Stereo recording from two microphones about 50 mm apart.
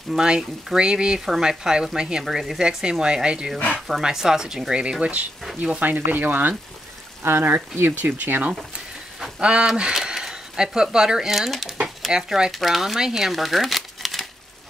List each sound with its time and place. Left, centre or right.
0.1 s speech: centre
2.6 s speech: centre
5.6 s speech: right
7.2 s speech: right
9.4 s speech: right; by 14.2 s centre